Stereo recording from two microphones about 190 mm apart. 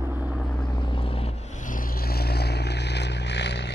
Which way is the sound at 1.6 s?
45° left (ahead or behind).